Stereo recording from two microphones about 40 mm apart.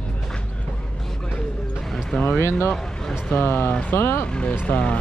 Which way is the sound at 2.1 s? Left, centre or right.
Left.